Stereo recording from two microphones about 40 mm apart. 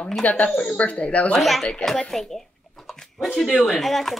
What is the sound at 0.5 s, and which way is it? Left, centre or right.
Speech, left.